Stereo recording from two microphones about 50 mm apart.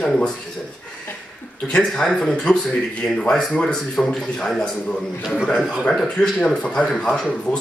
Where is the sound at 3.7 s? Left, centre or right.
Centre.